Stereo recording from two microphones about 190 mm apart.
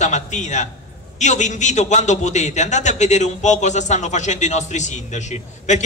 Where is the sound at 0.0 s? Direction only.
40° left (ahead or behind).